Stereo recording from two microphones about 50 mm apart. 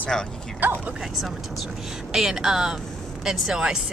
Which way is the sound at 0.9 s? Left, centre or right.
Centre.